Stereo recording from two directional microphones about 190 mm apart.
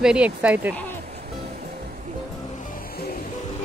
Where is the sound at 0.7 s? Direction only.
10° left (ahead or behind).